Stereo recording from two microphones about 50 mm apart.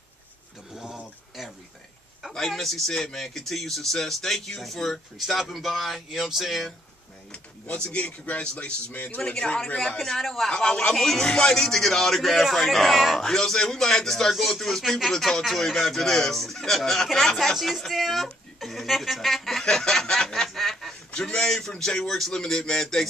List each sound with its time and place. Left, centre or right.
0.7 s a sound: centre
2.2 s a man's voice: centre
7.7 s speech: left
9.2 s speech: centre
10.5 s a man's voice: centre
13.2 s speech: centre
19.6 s a sound: centre
21.2 s speech: centre